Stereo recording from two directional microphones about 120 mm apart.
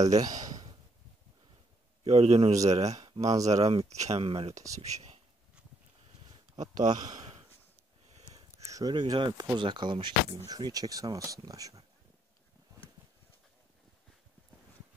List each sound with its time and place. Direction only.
0.0 s a sound: 30° right (ahead or behind)
2.0 s speech: 65° right (ahead or behind)
3.2 s speech: 30° right (ahead or behind)
3.5 s speech: 65° right (ahead or behind)
4.6 s speech: 25° right (ahead or behind)
4.9 s a sound: 65° right (ahead or behind)
6.8 s speech: 35° right (ahead or behind)
8.5 s a sound: 30° right (ahead or behind)
8.9 s speech: 40° right (ahead or behind)
10.5 s speech: 30° right (ahead or behind)